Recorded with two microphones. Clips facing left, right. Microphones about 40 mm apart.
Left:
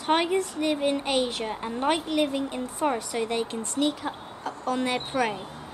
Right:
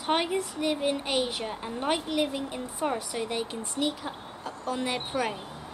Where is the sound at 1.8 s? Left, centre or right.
Centre.